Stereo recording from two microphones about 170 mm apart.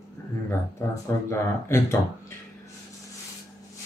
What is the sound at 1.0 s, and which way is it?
Speech, 15° left (ahead or behind).